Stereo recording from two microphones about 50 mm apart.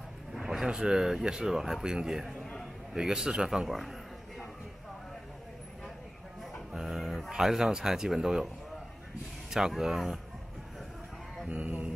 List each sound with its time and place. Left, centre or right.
0.3 s a man's voice: centre
3.6 s a man's voice: centre
6.7 s a sound: centre
7.2 s speech: centre
9.5 s speech: centre
11.4 s a sound: right